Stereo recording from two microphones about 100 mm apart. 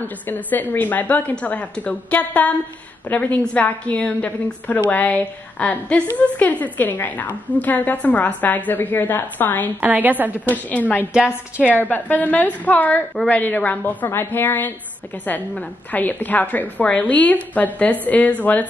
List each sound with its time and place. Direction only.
0.0 s a woman's voice: 20° left (ahead or behind)
9.8 s a woman's voice: 15° right (ahead or behind)
10.5 s a woman's voice: 15° left (ahead or behind)
11.1 s a woman's voice: 10° right (ahead or behind)
11.6 s a woman's voice: 20° left (ahead or behind)